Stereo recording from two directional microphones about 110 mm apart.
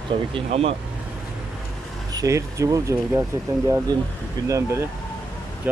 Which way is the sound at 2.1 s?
30° right (ahead or behind).